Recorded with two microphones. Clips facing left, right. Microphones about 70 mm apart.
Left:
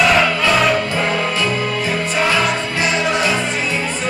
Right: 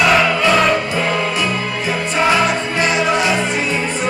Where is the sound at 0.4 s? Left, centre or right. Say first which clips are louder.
Right 1 dB; centre.